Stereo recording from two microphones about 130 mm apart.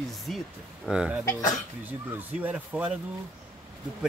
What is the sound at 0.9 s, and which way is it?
Speech, 10° right (ahead or behind).